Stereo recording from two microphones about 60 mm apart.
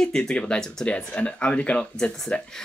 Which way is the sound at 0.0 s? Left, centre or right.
Centre.